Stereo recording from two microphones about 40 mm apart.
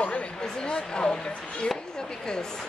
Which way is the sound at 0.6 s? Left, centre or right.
Left.